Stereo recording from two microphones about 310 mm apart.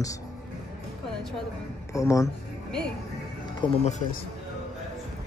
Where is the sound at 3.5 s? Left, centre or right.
Centre.